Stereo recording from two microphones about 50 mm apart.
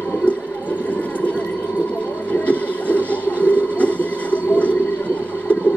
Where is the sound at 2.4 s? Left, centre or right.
Left.